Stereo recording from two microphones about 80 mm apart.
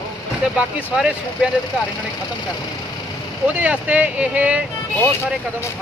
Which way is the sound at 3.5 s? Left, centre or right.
Centre.